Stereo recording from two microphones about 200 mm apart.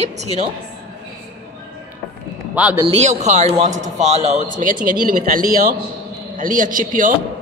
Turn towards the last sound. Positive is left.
turn(degrees=-40)  # may be behind; listen again after turning